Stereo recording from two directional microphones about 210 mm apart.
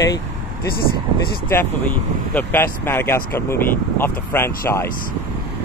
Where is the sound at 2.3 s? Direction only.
10° left (ahead or behind).